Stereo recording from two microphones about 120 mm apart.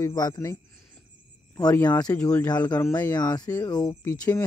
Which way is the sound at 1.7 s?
15° left (ahead or behind).